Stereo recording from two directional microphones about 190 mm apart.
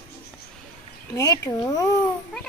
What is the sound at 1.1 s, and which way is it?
Speech, 20° left (ahead or behind).